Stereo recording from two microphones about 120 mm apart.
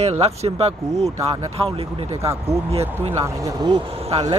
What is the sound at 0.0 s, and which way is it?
Speech, 60° right (ahead or behind).